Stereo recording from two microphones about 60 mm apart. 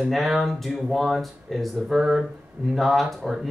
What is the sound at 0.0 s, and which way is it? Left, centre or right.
Speech, centre.